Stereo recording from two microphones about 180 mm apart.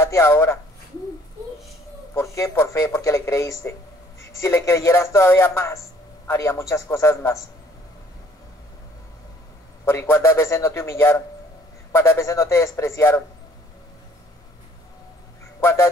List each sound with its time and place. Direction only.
0.0 s speech: 15° left (ahead or behind)
2.1 s speech: 15° left (ahead or behind)
9.8 s speech: 10° left (ahead or behind)
15.6 s speech: 15° left (ahead or behind)